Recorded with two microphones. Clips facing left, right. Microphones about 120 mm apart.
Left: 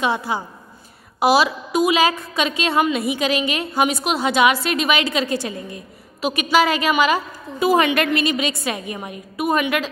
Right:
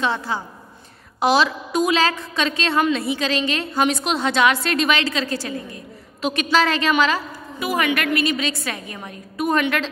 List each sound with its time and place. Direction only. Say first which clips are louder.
0.0 s a woman's voice: left 2 dB; 15° left (ahead or behind)
7.5 s a woman's voice: left 5 dB; 25° left (ahead or behind); by 9.8 s 10° left (ahead or behind)